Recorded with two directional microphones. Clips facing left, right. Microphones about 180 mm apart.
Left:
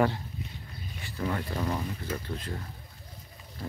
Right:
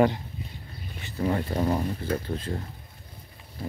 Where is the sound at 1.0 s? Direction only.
30° right (ahead or behind).